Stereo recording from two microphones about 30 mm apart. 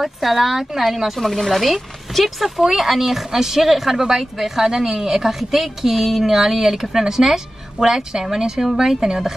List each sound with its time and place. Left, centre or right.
0.0 s speech: centre
4.6 s speech: centre